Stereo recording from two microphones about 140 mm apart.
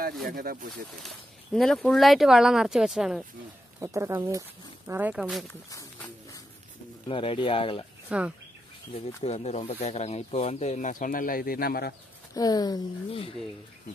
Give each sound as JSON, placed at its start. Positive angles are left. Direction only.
{"t": 0.3, "sound": "speech", "side_deg": -80}
{"t": 1.0, "sound": "speech", "side_deg": 5}
{"t": 3.8, "sound": "speech", "side_deg": -20}
{"t": 5.2, "sound": "speech", "side_deg": 0}
{"t": 5.5, "sound": "speech", "side_deg": 25}
{"t": 7.1, "sound": "speech", "side_deg": 40}
{"t": 8.1, "sound": "speech", "side_deg": -10}
{"t": 9.2, "sound": "speech", "side_deg": 50}
{"t": 12.4, "sound": "speech", "side_deg": 30}